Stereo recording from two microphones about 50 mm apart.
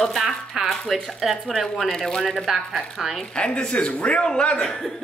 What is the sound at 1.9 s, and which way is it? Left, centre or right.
Speech, centre.